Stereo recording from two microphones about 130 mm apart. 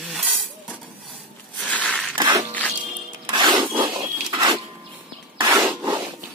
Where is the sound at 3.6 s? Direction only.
40° right (ahead or behind).